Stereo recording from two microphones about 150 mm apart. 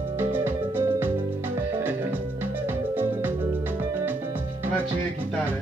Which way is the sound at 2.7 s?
15° right (ahead or behind).